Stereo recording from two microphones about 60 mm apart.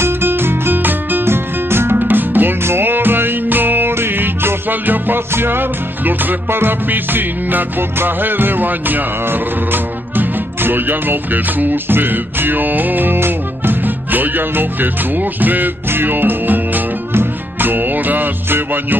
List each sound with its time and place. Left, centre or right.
0.0 s music: right